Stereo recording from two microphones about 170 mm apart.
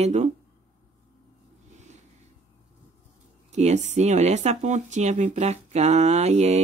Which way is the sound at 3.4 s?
40° right (ahead or behind).